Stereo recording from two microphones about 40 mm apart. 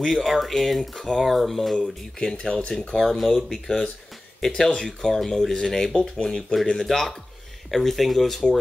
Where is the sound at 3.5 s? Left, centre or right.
Centre.